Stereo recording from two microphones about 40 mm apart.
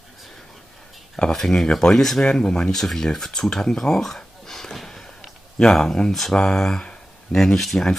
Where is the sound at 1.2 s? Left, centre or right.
Centre.